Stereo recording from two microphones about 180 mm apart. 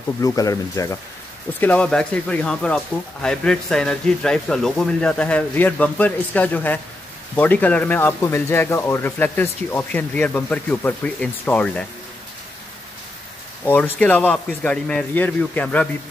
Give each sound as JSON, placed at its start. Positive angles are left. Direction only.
{"t": 0.2, "sound": "speech", "side_deg": 20}
{"t": 1.6, "sound": "speech", "side_deg": 5}
{"t": 13.7, "sound": "speech", "side_deg": 10}